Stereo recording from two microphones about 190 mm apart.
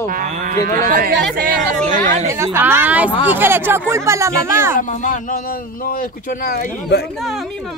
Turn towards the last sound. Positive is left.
turn(degrees=55)  # may be behind; listen again after turning